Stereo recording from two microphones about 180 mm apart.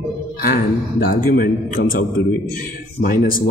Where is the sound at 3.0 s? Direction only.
50° left (ahead or behind).